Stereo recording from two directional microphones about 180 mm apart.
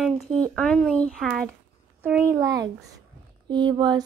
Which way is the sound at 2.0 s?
10° right (ahead or behind).